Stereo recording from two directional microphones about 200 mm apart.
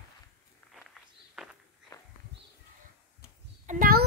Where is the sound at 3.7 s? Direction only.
45° right (ahead or behind).